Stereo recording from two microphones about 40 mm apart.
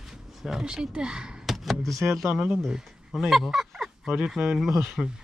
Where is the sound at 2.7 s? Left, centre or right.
Centre.